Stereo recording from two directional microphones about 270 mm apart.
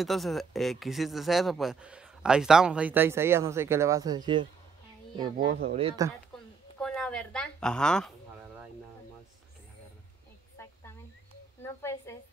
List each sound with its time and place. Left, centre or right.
0.0 s speech: centre
5.5 s speech: right
5.8 s speech: centre
6.8 s a woman's voice: centre
10.6 s snake: centre
11.6 s a woman's voice: centre